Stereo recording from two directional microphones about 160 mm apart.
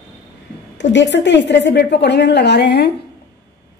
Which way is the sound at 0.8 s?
90° left.